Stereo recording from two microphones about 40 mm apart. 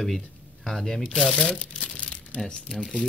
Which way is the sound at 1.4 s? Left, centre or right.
Left.